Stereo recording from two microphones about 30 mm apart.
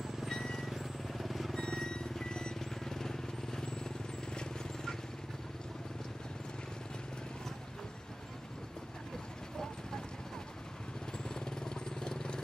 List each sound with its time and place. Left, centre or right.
0.7 s vehicle: centre
1.5 s vehicle: left
2.6 s vehicle: centre
11.2 s vehicle: left